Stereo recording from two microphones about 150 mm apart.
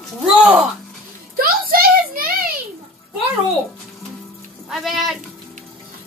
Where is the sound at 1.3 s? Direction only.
75° right (ahead or behind).